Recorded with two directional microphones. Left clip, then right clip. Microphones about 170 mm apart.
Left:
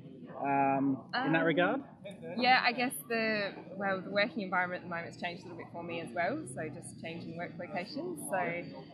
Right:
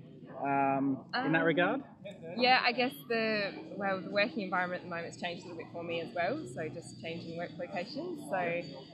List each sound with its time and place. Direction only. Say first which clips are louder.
0.4 s a sound: left 1 dB; 15° left (ahead or behind)
1.3 s speech: even; 10° left (ahead or behind)
2.3 s speech: even; 15° right (ahead or behind)